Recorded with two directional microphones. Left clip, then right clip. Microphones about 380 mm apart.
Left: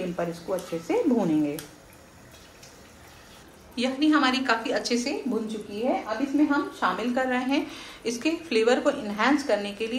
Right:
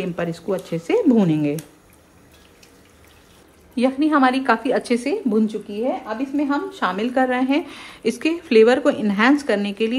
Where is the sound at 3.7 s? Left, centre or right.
Centre.